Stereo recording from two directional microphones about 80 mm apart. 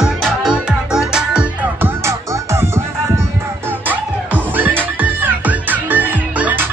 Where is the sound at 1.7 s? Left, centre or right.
Right.